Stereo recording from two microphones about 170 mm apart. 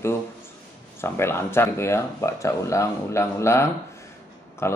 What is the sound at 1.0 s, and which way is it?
Speech, 15° left (ahead or behind).